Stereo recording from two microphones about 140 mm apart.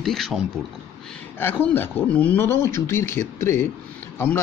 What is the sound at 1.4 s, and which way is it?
Speech, 15° left (ahead or behind).